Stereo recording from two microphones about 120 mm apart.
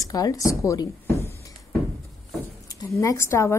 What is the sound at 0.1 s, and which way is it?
Speech, 30° left (ahead or behind).